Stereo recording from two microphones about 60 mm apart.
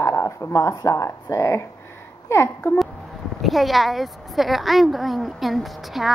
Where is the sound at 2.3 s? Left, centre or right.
Left.